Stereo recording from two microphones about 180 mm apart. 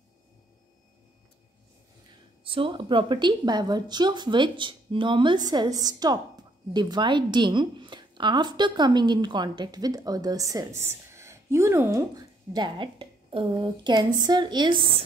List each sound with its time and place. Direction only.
2.4 s speech: 30° right (ahead or behind); by 12.0 s 15° right (ahead or behind)
12.5 s a woman's voice: 25° right (ahead or behind)